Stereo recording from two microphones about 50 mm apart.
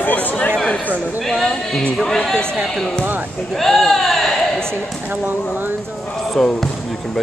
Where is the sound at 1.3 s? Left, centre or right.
Centre.